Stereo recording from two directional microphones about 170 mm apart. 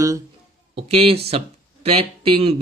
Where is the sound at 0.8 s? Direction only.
35° right (ahead or behind).